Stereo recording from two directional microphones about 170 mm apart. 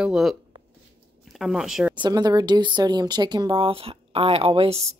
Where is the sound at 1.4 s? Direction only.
5° right (ahead or behind).